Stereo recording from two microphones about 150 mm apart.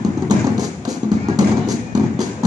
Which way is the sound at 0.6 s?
25° right (ahead or behind).